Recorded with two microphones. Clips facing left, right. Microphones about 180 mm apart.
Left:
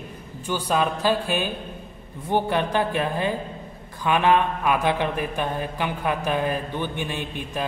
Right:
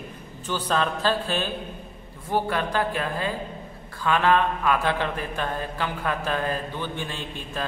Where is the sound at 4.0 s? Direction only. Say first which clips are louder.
Left 1 dB; 15° left (ahead or behind).